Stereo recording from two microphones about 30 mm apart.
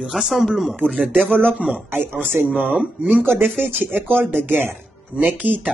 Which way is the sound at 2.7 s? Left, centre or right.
Right.